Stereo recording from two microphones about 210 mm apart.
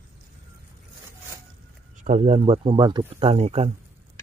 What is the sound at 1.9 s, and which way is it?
Speech, 35° right (ahead or behind).